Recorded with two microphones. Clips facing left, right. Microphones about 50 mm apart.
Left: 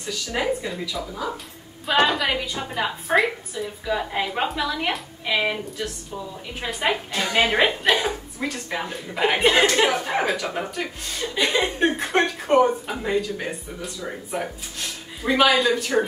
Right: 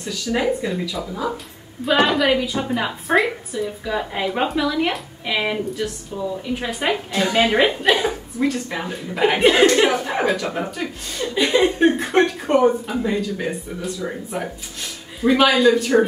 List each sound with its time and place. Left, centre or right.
0.1 s a woman's voice: centre
13.5 s a woman's voice: centre